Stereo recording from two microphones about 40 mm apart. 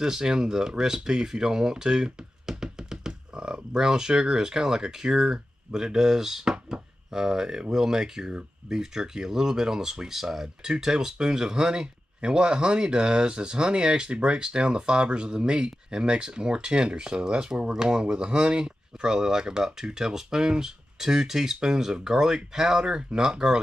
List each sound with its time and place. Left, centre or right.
0.0 s speech: centre